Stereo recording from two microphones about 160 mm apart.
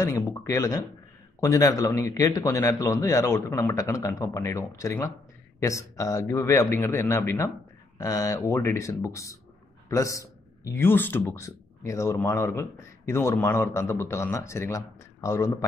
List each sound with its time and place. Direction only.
0.0 s a man's voice: 20° left (ahead or behind)